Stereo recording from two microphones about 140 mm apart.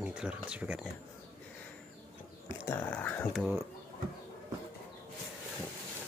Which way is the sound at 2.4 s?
15° left (ahead or behind).